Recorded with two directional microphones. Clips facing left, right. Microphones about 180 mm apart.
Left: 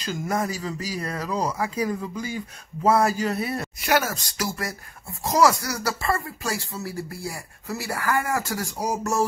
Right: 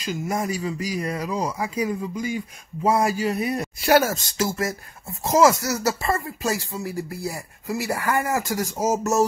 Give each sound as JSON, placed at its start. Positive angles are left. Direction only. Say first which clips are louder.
{"t": 0.0, "sound": "speech", "louder": "even", "side_deg": -10}
{"t": 3.8, "sound": "speech", "louder": "right 5 dB", "side_deg": -30}